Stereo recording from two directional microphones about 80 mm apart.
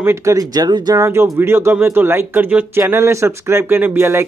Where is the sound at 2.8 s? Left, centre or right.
Right.